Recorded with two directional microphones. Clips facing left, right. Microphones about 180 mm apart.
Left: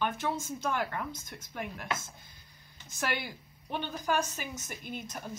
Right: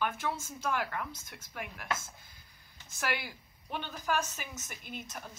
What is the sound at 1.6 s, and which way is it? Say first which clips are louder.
Speech: left 2 dB; 25° left (ahead or behind).